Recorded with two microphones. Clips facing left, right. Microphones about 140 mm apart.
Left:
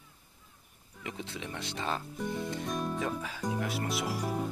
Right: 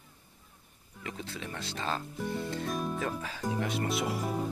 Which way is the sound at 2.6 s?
Centre (ahead or behind).